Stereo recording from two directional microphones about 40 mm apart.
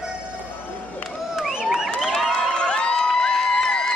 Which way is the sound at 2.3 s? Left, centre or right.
Left.